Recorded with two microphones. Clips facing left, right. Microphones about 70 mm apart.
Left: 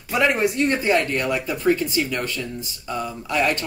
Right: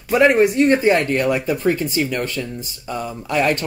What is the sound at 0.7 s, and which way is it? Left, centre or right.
Speech, right.